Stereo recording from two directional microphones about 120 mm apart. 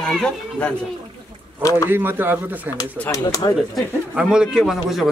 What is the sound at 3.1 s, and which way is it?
Speech, 30° left (ahead or behind).